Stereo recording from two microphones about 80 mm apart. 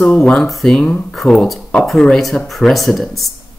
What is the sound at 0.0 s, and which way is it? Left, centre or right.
Speech, centre.